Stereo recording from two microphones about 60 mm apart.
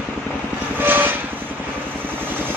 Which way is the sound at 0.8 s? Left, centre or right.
Right.